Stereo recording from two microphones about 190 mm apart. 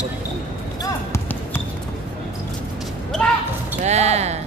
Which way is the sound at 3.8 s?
35° right (ahead or behind).